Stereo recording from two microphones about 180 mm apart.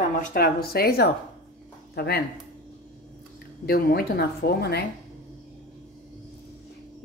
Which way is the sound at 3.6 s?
60° left (ahead or behind).